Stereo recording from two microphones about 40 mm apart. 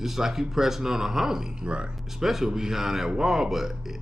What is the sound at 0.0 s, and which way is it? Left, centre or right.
A man's voice, centre.